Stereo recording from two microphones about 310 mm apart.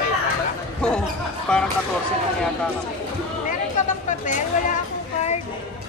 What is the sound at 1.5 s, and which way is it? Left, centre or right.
Speech, centre.